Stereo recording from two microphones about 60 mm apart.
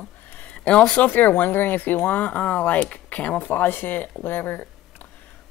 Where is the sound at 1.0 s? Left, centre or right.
Left.